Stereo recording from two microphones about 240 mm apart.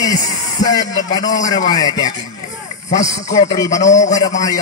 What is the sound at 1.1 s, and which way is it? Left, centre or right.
A man's voice, centre.